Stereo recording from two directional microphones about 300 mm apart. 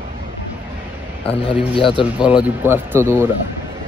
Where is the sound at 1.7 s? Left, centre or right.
Centre.